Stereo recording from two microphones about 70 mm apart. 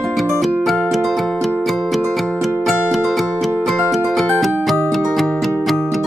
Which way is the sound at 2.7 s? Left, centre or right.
Centre.